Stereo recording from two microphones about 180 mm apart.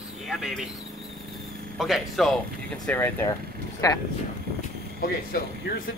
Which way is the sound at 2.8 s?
10° left (ahead or behind).